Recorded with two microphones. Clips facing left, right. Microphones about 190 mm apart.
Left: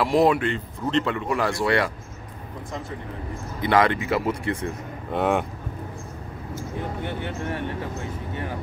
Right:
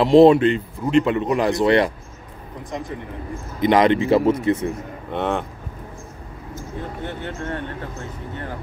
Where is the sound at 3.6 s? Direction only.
20° right (ahead or behind).